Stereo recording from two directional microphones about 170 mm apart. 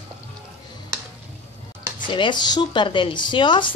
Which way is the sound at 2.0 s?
30° left (ahead or behind).